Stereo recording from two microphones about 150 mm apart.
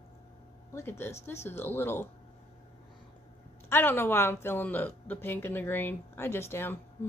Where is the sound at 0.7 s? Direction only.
15° left (ahead or behind).